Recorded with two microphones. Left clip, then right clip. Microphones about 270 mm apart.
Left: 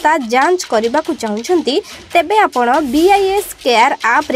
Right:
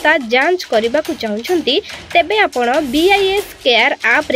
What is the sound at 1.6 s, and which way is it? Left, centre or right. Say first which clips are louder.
Speech: even; left.